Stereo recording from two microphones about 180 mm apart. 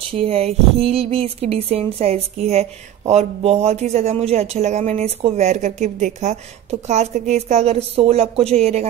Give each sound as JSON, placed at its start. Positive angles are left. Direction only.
{"t": 0.1, "sound": "a man's voice", "side_deg": -35}